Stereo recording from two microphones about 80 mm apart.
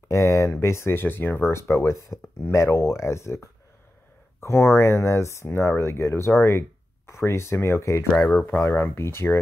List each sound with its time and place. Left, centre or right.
0.1 s speech: left
4.4 s speech: left